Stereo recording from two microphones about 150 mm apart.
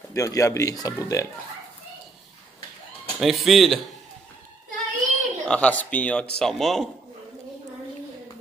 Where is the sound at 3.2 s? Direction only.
Centre (ahead or behind).